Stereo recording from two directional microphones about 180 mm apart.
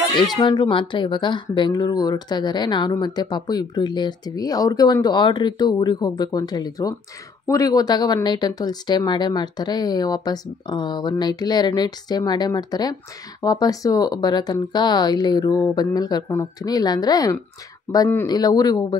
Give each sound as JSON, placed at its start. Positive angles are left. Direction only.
{"t": 0.1, "sound": "speech", "side_deg": 25}